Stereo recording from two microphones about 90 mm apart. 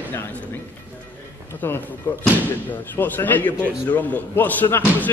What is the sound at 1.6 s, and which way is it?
A man's voice, 25° left (ahead or behind).